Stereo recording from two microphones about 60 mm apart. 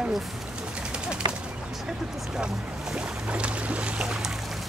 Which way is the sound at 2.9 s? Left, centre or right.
Centre.